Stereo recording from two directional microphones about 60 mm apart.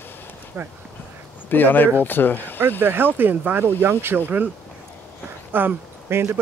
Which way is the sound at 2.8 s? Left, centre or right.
Right.